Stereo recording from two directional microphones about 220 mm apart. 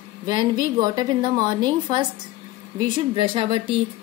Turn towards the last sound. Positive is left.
turn(degrees=-25)  # may be behind; listen again after turning